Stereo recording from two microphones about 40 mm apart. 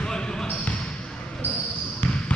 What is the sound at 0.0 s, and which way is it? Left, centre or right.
Basketball bounce, centre.